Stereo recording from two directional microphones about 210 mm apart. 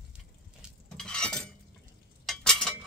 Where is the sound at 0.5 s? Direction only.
5° left (ahead or behind).